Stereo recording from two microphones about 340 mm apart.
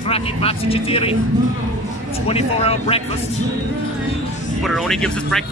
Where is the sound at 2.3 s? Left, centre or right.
Centre.